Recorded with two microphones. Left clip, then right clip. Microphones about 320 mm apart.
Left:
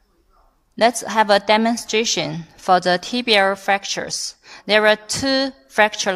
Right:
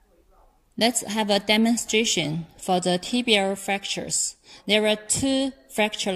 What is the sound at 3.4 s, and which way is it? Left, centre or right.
Speech, left.